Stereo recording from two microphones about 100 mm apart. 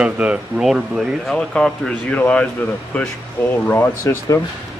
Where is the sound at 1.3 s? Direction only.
10° left (ahead or behind); by 4.4 s 25° left (ahead or behind).